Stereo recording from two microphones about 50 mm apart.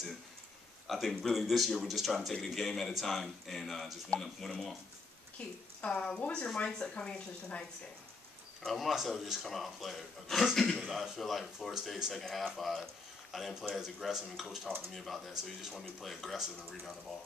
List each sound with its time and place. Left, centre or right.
0.8 s speech: centre
5.4 s speech: left
8.7 s speech: centre
13.7 s speech: centre